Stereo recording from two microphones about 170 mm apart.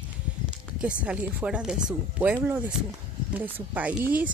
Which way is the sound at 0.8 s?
5° right (ahead or behind).